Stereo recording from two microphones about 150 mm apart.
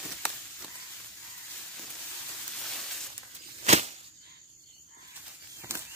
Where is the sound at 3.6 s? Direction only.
50° right (ahead or behind).